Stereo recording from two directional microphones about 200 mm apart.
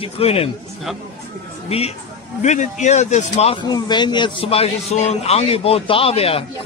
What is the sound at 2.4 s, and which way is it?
A man's voice, 35° left (ahead or behind).